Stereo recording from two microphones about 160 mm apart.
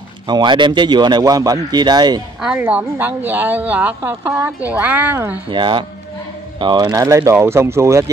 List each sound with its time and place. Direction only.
0.3 s a man's voice: 30° right (ahead or behind)
2.4 s speech: 5° right (ahead or behind)
5.5 s a man's voice: 30° right (ahead or behind)